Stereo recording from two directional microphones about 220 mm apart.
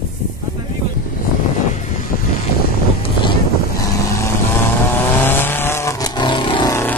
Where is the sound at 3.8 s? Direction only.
15° left (ahead or behind).